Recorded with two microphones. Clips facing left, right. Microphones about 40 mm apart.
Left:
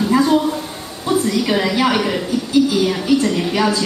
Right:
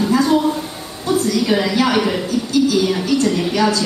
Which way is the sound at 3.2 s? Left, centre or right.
Centre.